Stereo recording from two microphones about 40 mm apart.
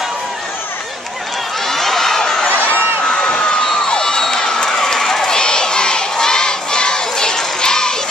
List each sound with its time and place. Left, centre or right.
1.7 s crowd: centre
2.4 s a sound: left
3.1 s crowd: left